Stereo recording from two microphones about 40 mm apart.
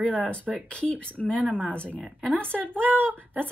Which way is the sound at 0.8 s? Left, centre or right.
Left.